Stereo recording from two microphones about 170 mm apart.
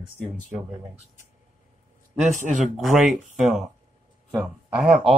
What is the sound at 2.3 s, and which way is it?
Speech, 50° right (ahead or behind).